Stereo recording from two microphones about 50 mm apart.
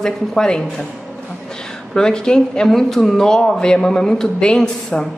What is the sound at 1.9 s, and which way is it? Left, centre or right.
Speech, centre.